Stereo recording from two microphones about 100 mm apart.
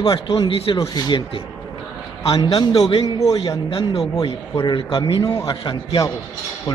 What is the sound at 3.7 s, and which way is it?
Speech, 70° left (ahead or behind).